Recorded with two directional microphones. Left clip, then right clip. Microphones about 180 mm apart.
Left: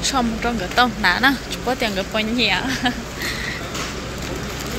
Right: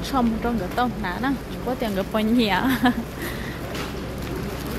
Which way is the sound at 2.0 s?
30° right (ahead or behind).